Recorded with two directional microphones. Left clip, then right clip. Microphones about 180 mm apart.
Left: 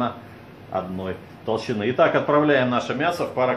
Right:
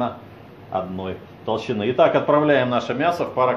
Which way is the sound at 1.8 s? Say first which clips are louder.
Right 2 dB; 15° right (ahead or behind).